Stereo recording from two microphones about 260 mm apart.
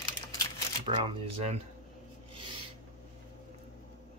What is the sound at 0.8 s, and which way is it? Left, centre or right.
Speech, centre.